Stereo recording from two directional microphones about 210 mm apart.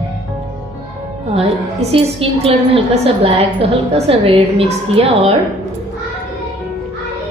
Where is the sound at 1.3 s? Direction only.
30° right (ahead or behind).